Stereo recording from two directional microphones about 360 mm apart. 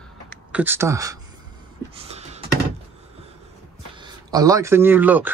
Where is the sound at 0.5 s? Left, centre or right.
Centre.